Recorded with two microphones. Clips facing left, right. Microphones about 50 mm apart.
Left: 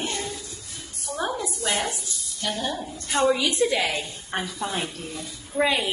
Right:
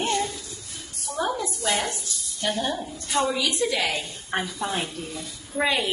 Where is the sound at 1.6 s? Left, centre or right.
Centre.